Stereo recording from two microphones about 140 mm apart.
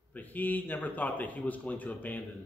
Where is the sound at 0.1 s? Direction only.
10° left (ahead or behind).